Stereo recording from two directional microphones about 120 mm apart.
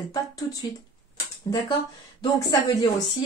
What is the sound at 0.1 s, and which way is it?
Speech, 30° left (ahead or behind).